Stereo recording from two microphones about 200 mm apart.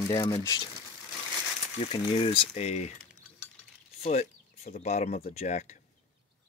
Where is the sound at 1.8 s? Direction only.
25° left (ahead or behind).